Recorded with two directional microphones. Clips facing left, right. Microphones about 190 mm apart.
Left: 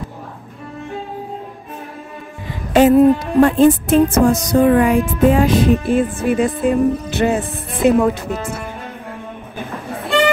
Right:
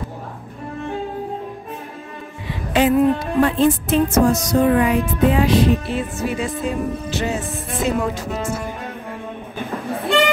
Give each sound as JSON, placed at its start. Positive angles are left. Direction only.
{"t": 2.7, "sound": "music", "side_deg": 40}